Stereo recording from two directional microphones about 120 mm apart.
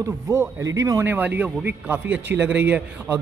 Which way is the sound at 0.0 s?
25° right (ahead or behind).